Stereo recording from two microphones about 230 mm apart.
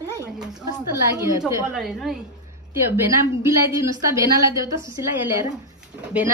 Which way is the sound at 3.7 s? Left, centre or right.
Centre.